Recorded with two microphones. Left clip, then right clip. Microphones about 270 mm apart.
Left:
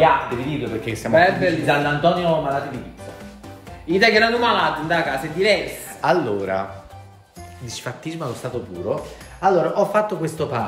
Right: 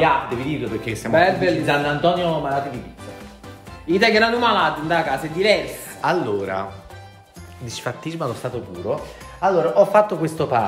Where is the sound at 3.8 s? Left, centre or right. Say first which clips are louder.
Left 1 dB; centre.